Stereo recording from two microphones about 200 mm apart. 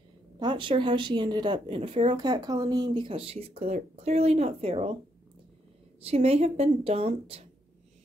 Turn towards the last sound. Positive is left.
turn(degrees=-30)  # may be behind; listen again after turning